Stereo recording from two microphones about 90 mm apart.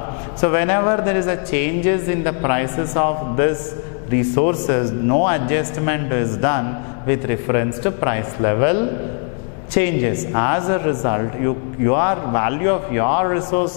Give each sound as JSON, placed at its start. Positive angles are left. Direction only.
{"t": 0.4, "sound": "a man's voice", "side_deg": 15}